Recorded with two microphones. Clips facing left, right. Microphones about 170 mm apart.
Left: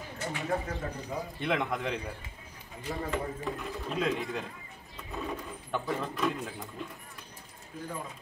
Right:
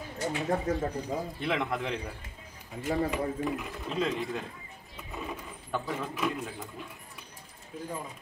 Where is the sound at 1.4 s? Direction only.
Centre (ahead or behind).